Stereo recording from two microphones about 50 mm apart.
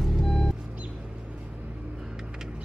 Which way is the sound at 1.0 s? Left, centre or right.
Right.